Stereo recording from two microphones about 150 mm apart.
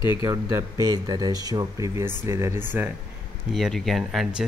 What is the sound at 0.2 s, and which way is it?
Speech, 20° right (ahead or behind).